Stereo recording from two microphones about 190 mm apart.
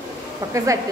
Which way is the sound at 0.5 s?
15° right (ahead or behind).